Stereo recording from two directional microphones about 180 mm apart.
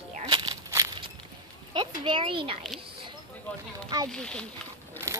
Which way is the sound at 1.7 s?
25° right (ahead or behind).